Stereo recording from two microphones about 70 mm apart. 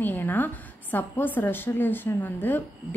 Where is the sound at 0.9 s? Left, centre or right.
Left.